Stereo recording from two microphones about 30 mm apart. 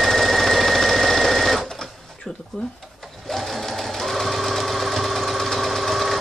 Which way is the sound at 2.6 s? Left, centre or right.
Left.